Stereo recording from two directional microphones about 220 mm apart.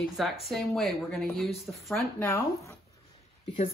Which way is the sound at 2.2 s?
10° left (ahead or behind).